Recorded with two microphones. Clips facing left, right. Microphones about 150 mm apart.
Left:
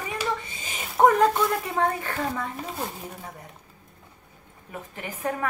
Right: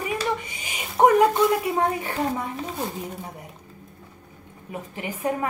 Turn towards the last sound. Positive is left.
turn(degrees=-15)  # may be behind; listen again after turning